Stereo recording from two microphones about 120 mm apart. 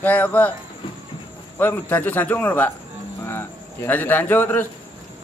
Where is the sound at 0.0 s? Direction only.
15° left (ahead or behind).